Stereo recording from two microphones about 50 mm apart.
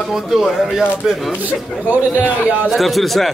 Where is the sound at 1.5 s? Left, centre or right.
Right.